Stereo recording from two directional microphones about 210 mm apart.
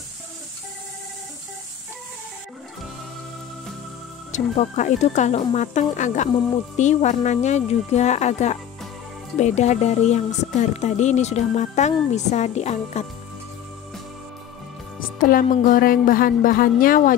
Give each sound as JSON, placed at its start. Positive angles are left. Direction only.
{"t": 4.3, "sound": "speech", "side_deg": 35}
{"t": 15.1, "sound": "speech", "side_deg": 40}